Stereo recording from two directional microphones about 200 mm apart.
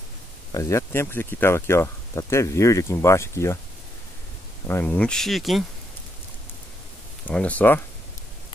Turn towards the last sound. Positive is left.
turn(degrees=10)  # may be behind; listen again after turning